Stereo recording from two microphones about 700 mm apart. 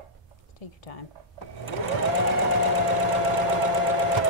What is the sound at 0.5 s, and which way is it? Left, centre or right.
Speech, left.